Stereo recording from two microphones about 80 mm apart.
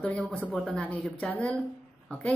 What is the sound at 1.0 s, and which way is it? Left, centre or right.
Speech, centre.